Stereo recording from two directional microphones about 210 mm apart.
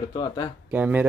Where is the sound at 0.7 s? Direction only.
10° right (ahead or behind).